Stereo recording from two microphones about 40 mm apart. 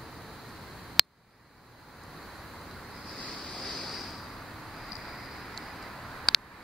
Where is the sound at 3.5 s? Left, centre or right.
Centre.